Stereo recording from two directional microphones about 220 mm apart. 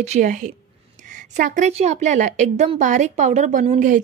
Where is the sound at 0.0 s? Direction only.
35° right (ahead or behind).